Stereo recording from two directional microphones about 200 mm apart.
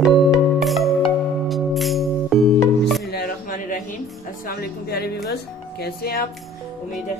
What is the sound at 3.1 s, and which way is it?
Music, 50° left (ahead or behind).